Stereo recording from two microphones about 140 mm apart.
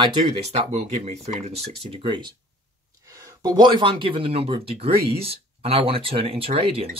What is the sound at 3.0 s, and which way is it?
Speech, 25° right (ahead or behind).